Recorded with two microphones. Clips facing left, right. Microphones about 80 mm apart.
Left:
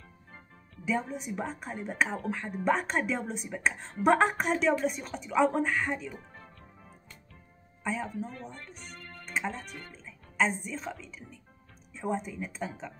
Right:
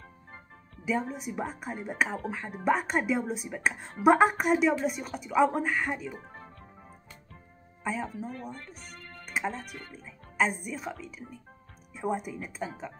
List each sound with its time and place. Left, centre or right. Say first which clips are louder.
1.1 s speech: even; centre
6.1 s music: right 3 dB; right
7.8 s speech: even; centre